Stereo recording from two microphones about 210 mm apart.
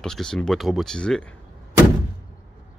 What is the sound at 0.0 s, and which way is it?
Speech, 5° left (ahead or behind).